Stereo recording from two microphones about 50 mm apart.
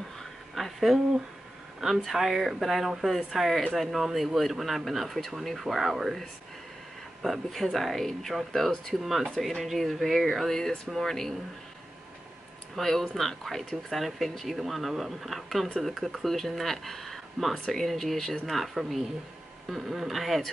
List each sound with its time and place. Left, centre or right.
0.2 s a sound: centre
2.0 s speech: centre
7.2 s speech: centre
12.7 s speech: centre